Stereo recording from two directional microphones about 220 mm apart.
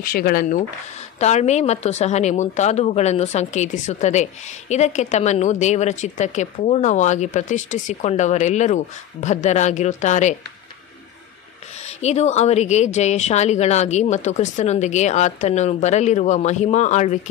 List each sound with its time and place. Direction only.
0.0 s speech: 40° left (ahead or behind)
12.0 s speech: 30° left (ahead or behind)